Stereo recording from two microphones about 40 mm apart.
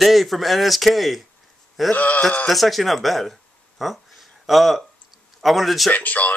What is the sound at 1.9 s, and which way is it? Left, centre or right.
Speech, left.